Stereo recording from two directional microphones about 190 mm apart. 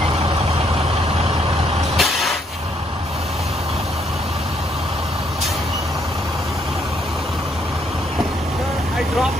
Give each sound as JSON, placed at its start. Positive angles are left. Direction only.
{"t": 2.0, "sound": "vehicle", "side_deg": 0}